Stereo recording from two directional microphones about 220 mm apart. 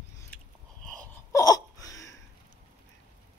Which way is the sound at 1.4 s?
15° left (ahead or behind).